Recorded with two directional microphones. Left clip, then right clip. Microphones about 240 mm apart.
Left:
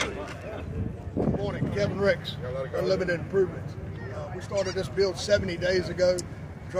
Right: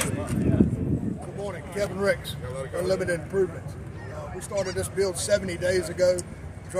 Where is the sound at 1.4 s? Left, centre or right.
Centre.